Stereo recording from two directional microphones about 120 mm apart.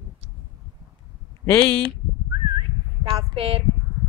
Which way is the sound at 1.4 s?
20° left (ahead or behind).